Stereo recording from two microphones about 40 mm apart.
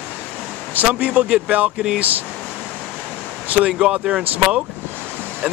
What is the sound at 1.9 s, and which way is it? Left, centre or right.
Speech, right.